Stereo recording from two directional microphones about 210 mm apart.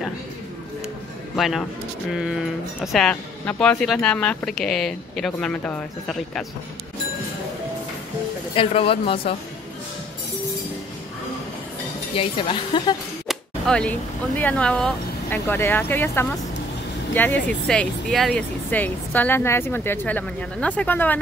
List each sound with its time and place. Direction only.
1.3 s speech: centre (ahead or behind)
8.5 s speech: 25° left (ahead or behind)
12.2 s speech: 25° left (ahead or behind)
13.3 s a woman's voice: 5° left (ahead or behind)